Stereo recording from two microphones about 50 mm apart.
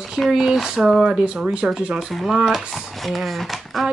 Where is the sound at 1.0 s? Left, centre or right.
Centre.